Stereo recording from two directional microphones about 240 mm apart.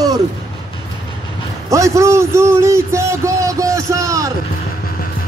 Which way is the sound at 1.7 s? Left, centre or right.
Centre.